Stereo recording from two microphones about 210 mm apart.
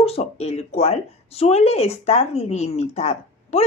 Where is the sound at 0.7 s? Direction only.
30° left (ahead or behind).